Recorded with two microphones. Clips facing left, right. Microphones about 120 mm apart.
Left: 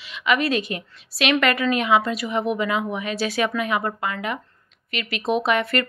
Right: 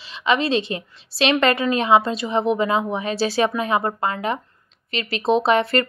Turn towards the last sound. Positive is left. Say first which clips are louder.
# right 4 dB
turn(degrees=-30)  # may be behind; listen again after turning